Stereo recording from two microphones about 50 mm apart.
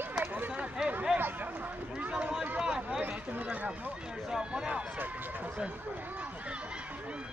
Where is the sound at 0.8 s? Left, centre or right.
Centre.